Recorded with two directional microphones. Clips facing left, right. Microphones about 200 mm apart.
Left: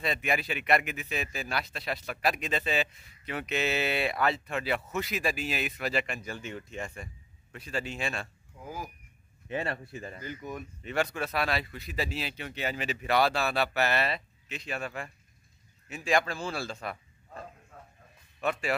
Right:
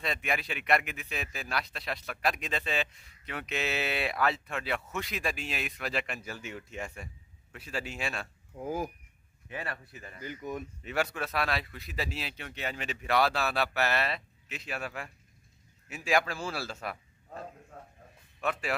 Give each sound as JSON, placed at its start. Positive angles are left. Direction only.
{"t": 0.0, "sound": "a man's voice", "side_deg": 0}
{"t": 8.5, "sound": "speech", "side_deg": -50}
{"t": 9.5, "sound": "speech", "side_deg": 25}
{"t": 10.2, "sound": "speech", "side_deg": -15}
{"t": 10.8, "sound": "a man's voice", "side_deg": -5}
{"t": 18.4, "sound": "a man's voice", "side_deg": 0}